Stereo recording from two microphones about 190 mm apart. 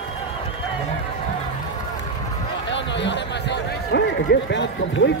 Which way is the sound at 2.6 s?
70° left (ahead or behind).